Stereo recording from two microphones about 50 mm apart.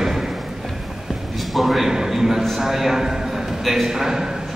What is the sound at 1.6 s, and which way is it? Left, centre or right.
A man's voice, centre.